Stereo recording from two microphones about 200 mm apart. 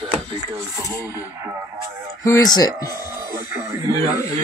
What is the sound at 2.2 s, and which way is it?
Speech, 15° left (ahead or behind).